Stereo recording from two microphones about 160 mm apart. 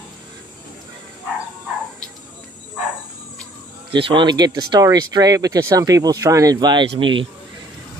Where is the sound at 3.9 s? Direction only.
30° right (ahead or behind).